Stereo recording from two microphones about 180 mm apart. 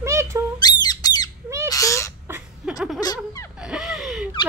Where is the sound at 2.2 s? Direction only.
10° right (ahead or behind).